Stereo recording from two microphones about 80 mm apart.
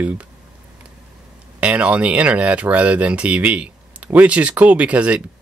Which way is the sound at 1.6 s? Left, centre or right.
Centre.